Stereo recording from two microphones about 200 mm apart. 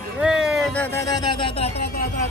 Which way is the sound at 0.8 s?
15° left (ahead or behind).